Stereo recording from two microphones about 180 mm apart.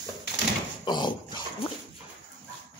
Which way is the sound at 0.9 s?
25° left (ahead or behind).